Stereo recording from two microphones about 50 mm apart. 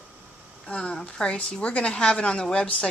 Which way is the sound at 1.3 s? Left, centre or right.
Left.